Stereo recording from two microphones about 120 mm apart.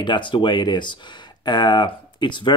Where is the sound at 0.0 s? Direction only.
40° left (ahead or behind).